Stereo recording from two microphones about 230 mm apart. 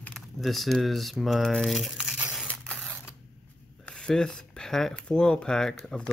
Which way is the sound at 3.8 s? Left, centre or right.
Centre.